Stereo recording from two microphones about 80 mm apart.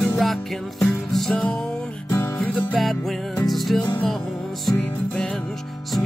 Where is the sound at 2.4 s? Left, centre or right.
Centre.